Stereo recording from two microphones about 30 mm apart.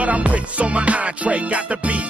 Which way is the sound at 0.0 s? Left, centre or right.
Right.